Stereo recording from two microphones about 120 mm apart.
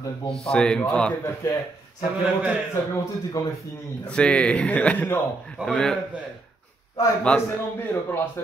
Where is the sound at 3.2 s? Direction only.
25° left (ahead or behind).